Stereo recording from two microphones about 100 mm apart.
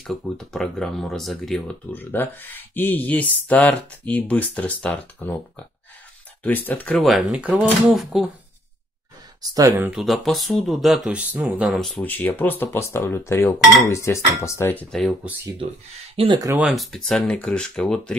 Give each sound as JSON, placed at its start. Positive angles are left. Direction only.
{"t": 0.0, "sound": "speech", "side_deg": 5}
{"t": 1.9, "sound": "speech", "side_deg": 20}
{"t": 6.4, "sound": "speech", "side_deg": 20}
{"t": 7.0, "sound": "speech", "side_deg": 0}
{"t": 7.9, "sound": "speech", "side_deg": -5}
{"t": 9.4, "sound": "speech", "side_deg": -40}
{"t": 9.7, "sound": "speech", "side_deg": -20}
{"t": 9.9, "sound": "speech", "side_deg": 0}
{"t": 11.7, "sound": "speech", "side_deg": 0}
{"t": 12.0, "sound": "speech", "side_deg": 20}
{"t": 14.9, "sound": "speech", "side_deg": 5}
{"t": 16.2, "sound": "speech", "side_deg": -70}
{"t": 16.7, "sound": "speech", "side_deg": 5}